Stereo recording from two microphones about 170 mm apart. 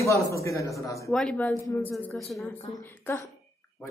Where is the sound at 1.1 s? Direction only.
5° left (ahead or behind).